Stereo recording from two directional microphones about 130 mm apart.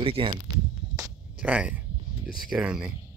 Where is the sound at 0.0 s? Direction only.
40° right (ahead or behind).